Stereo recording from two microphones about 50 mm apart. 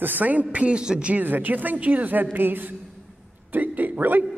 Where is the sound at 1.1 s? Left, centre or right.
Right.